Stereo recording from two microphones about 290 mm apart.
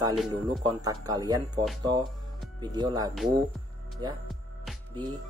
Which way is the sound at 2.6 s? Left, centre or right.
Centre.